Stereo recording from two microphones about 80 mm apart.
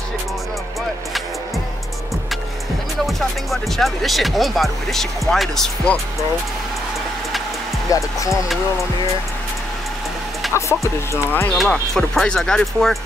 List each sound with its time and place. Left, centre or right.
3.1 s speech: centre
7.9 s speech: left
10.5 s speech: left
11.5 s speech: centre